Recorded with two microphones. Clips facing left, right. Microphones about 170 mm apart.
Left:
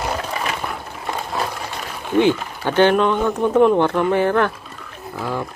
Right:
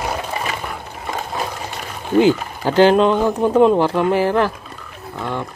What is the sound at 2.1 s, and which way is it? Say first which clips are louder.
Speech: right 2 dB; 35° right (ahead or behind).